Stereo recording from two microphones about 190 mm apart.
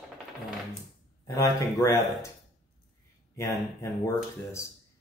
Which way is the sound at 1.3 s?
15° left (ahead or behind).